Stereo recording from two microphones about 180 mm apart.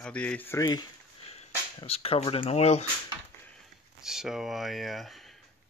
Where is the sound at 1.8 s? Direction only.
30° left (ahead or behind).